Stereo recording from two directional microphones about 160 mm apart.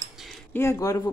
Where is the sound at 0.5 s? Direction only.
20° left (ahead or behind).